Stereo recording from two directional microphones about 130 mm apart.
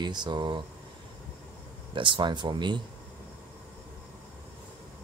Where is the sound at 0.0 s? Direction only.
35° right (ahead or behind).